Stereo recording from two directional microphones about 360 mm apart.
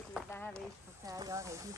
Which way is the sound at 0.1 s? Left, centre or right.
Centre.